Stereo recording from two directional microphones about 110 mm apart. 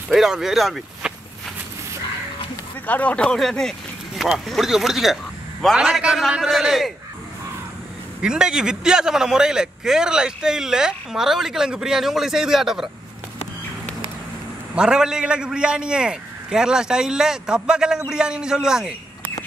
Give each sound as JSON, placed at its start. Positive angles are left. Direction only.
{"t": 0.1, "sound": "speech", "side_deg": -5}
{"t": 2.9, "sound": "a man's voice", "side_deg": 15}
{"t": 8.2, "sound": "a man's voice", "side_deg": -5}
{"t": 14.8, "sound": "a man's voice", "side_deg": -5}